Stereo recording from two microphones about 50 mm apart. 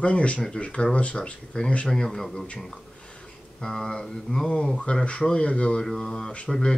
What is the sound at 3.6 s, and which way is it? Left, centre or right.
Speech, centre.